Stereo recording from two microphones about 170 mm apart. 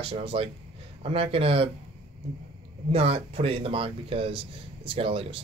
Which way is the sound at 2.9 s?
35° right (ahead or behind).